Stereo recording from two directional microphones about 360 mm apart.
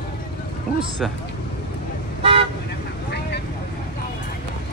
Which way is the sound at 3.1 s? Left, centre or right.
Left.